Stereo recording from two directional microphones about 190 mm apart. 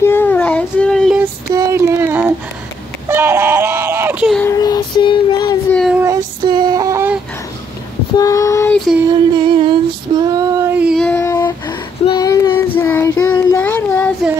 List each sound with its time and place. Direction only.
0.0 s child singing: 10° left (ahead or behind)
1.2 s female singing: 15° right (ahead or behind)
3.1 s a sound: 10° right (ahead or behind)
4.4 s child singing: 15° left (ahead or behind)
5.7 s child singing: 5° left (ahead or behind)
5.9 s child singing: 15° right (ahead or behind)
8.2 s child singing: 15° left (ahead or behind)
9.1 s female singing: 25° right (ahead or behind); by 11.1 s 5° right (ahead or behind)
11.1 s child singing: 15° left (ahead or behind)